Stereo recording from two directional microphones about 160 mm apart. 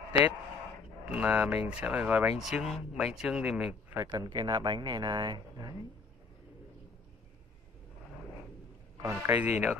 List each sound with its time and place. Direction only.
1.0 s speech: 5° right (ahead or behind)
3.9 s speech: 20° right (ahead or behind)
9.0 s speech: 15° right (ahead or behind)